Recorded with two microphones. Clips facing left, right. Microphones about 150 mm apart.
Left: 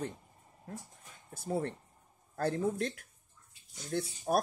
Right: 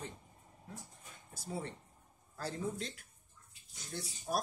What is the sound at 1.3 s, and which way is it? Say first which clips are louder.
Speech: left 8 dB; 55° left (ahead or behind).